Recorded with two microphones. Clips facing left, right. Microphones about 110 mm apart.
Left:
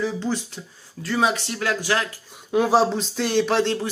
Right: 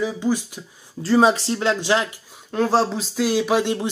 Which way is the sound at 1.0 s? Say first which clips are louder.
Right 6 dB; 30° right (ahead or behind).